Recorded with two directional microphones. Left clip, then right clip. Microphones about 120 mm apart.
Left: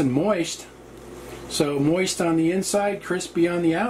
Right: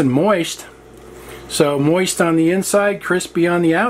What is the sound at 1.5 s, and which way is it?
Speech, 35° right (ahead or behind).